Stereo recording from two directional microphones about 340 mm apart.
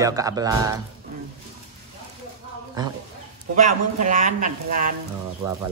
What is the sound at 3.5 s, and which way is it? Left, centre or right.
A woman's voice, right.